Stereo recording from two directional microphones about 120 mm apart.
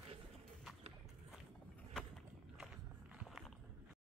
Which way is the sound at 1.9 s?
5° left (ahead or behind).